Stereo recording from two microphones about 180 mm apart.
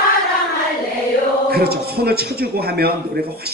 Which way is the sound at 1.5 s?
60° right (ahead or behind).